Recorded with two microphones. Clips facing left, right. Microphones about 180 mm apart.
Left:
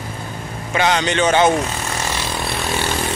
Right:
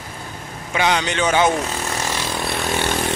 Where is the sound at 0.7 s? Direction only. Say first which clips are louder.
Left 2 dB; 10° right (ahead or behind).